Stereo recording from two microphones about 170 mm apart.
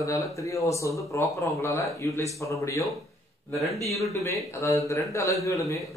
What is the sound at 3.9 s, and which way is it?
Speech, 20° left (ahead or behind).